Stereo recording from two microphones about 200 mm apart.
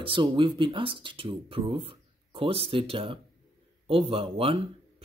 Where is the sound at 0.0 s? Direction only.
25° right (ahead or behind).